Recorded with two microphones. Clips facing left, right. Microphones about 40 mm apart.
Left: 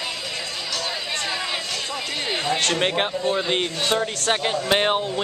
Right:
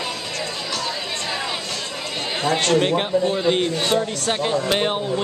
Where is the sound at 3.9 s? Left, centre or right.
Centre.